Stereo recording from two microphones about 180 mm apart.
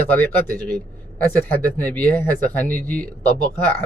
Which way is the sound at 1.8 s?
10° left (ahead or behind).